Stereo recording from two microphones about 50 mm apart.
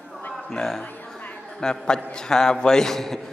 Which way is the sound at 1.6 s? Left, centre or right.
Centre.